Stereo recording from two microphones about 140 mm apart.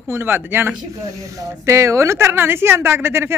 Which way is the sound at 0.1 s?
15° right (ahead or behind).